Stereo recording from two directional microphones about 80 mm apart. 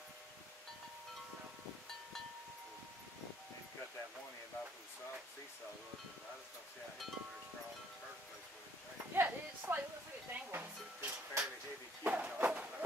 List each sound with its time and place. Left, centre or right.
9.1 s clip-clop: right
10.3 s music: right
12.0 s a sound: centre